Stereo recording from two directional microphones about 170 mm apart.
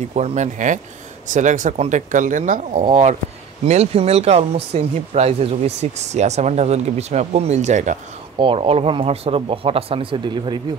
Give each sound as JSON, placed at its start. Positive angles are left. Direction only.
{"t": 0.1, "sound": "speech", "side_deg": -40}
{"t": 8.4, "sound": "speech", "side_deg": -30}